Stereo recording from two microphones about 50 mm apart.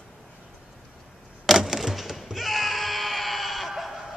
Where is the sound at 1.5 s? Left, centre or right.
Centre.